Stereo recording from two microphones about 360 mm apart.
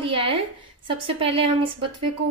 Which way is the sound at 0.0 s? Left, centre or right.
Centre.